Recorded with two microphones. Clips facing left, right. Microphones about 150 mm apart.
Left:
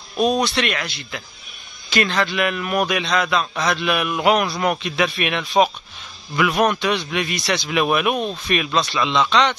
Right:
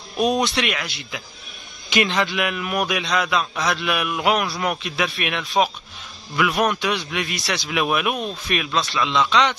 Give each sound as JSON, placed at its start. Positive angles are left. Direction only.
{"t": 0.2, "sound": "speech", "side_deg": -15}
{"t": 0.7, "sound": "speech", "side_deg": -5}
{"t": 1.9, "sound": "a man's voice", "side_deg": -15}